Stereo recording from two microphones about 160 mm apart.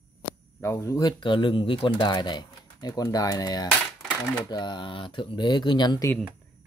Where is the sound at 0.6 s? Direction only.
20° left (ahead or behind).